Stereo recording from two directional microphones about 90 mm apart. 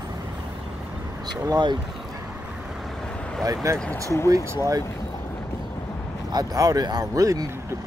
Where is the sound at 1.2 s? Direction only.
45° right (ahead or behind).